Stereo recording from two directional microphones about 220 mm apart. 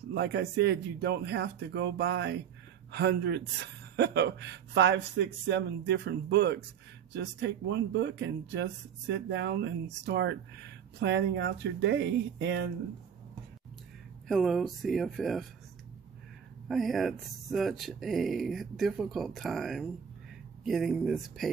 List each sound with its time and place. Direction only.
0.1 s a man's voice: 50° right (ahead or behind)
14.2 s speech: centre (ahead or behind)
16.6 s speech: centre (ahead or behind)